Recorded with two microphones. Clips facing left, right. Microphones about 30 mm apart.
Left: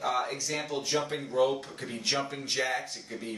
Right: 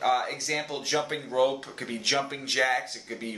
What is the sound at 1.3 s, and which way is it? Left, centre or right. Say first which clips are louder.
Speech: right 1 dB; right.